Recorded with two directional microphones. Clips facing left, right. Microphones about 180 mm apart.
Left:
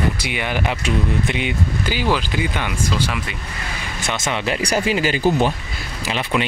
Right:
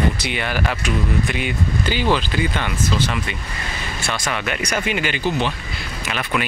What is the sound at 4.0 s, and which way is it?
Speech, 20° left (ahead or behind).